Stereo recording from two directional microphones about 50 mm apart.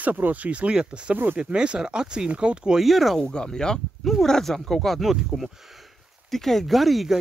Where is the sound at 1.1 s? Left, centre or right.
Right.